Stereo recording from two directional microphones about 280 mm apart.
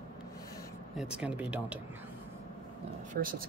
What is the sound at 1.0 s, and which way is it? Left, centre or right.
Speech, centre.